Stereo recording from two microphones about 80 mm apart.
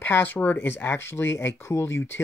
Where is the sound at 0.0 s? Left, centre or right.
Left.